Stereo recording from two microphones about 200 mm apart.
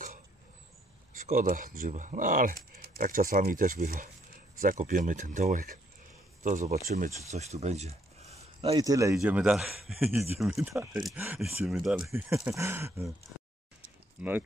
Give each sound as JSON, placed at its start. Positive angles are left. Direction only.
{"t": 1.1, "sound": "speech", "side_deg": -45}
{"t": 8.7, "sound": "speech", "side_deg": -15}
{"t": 14.2, "sound": "speech", "side_deg": -5}